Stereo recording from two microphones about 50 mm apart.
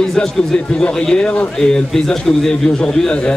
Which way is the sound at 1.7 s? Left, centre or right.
Centre.